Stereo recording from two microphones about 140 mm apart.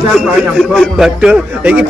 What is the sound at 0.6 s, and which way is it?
A man's voice, centre (ahead or behind).